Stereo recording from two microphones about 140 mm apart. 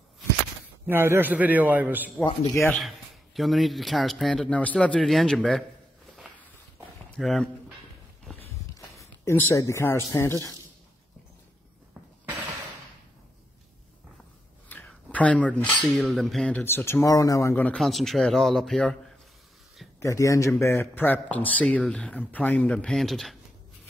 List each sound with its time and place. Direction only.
0.8 s a man's voice: 15° right (ahead or behind)
2.1 s a man's voice: 15° left (ahead or behind)
2.7 s speech: centre (ahead or behind)
7.2 s speech: centre (ahead or behind)
9.2 s speech: 20° left (ahead or behind)
14.7 s a sound: 10° left (ahead or behind)
15.9 s a man's voice: centre (ahead or behind); by 17.7 s 15° left (ahead or behind)
17.7 s speech: centre (ahead or behind)
20.0 s a man's voice: 20° left (ahead or behind); by 23.3 s centre (ahead or behind)